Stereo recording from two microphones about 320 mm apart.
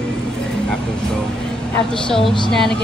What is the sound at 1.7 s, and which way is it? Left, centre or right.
A woman's voice, centre.